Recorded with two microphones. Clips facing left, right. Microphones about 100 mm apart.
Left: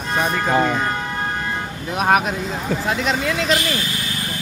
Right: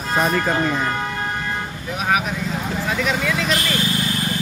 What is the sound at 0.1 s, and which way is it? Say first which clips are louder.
Speech: even; centre (ahead or behind).